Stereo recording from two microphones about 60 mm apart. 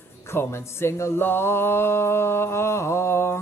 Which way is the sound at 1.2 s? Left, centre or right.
Left.